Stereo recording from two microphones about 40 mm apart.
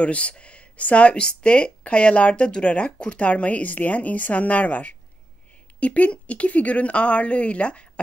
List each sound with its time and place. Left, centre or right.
0.0 s speech: left